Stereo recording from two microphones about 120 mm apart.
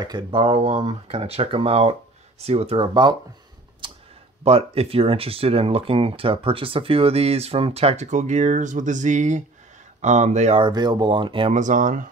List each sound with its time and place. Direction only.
0.0 s speech: 40° right (ahead or behind)
0.6 s speech: 60° right (ahead or behind)
2.9 s speech: 40° right (ahead or behind)
3.8 s clicking: 45° right (ahead or behind)
4.5 s speech: 55° right (ahead or behind); by 9.4 s 90° right
10.0 s speech: 80° right
10.5 s speech: 40° right (ahead or behind)
11.5 s speech: 90° right